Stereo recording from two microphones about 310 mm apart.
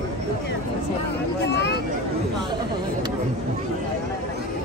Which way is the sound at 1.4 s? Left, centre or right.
Left.